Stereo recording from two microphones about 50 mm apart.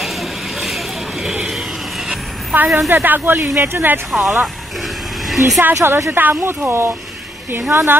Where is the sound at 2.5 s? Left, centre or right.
Right.